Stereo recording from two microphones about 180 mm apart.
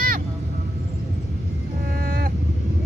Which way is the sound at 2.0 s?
55° right (ahead or behind).